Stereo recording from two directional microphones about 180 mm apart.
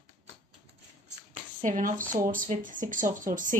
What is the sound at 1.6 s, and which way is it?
Speech, 50° right (ahead or behind).